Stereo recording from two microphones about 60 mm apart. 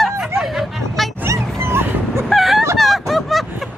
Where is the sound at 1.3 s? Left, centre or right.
Right.